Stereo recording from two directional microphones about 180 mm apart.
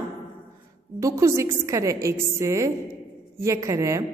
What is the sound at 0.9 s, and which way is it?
A woman's voice, 15° right (ahead or behind).